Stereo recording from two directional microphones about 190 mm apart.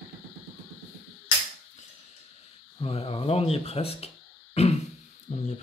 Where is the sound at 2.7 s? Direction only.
30° left (ahead or behind).